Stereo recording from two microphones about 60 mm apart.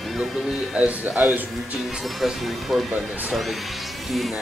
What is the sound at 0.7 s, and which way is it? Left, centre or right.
Speech, centre.